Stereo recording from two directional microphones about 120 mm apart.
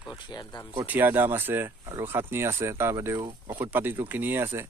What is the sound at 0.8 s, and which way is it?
Speech, 15° right (ahead or behind).